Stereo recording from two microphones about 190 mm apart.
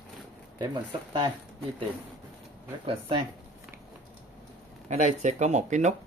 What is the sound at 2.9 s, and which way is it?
Speech, 30° right (ahead or behind).